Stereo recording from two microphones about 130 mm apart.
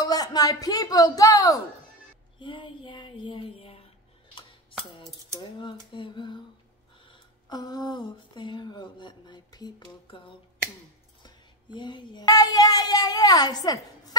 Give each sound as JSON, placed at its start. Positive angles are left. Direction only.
{"t": 0.0, "sound": "speech", "side_deg": 30}
{"t": 2.3, "sound": "speech", "side_deg": 40}
{"t": 5.6, "sound": "a sound", "side_deg": 40}
{"t": 11.2, "sound": "speech", "side_deg": 35}